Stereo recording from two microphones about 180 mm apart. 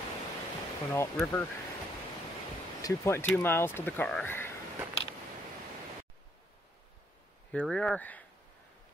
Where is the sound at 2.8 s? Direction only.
15° left (ahead or behind).